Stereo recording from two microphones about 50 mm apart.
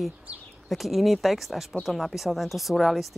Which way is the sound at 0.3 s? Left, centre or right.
Right.